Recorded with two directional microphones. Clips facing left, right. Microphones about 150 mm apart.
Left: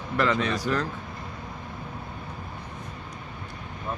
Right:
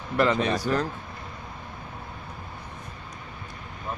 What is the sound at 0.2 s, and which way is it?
Speech, 25° right (ahead or behind).